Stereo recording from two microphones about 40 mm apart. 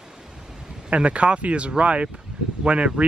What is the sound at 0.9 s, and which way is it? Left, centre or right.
Speech, right.